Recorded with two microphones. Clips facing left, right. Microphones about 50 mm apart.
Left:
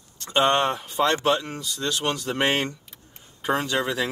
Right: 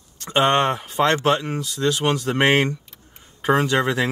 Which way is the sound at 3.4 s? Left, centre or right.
Centre.